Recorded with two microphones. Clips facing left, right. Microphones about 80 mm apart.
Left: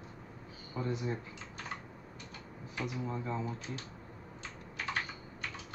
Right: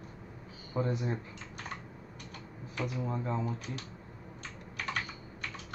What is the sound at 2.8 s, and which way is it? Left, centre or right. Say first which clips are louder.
Speech: right 3 dB; right.